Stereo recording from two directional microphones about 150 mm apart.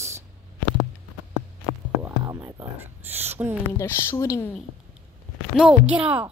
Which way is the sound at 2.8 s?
15° right (ahead or behind).